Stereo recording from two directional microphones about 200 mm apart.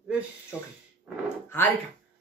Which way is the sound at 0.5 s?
10° left (ahead or behind).